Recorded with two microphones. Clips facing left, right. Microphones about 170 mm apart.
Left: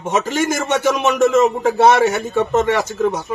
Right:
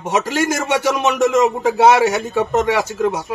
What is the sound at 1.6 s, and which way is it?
A man's voice, 5° right (ahead or behind).